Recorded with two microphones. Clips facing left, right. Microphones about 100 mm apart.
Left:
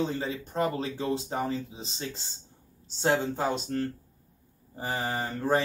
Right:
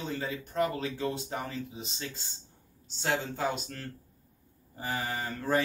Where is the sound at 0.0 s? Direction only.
25° left (ahead or behind).